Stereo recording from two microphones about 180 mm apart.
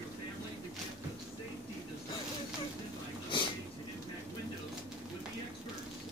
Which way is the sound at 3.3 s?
25° left (ahead or behind).